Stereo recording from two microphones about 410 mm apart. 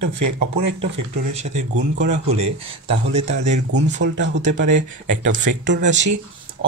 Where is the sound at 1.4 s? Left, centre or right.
Centre.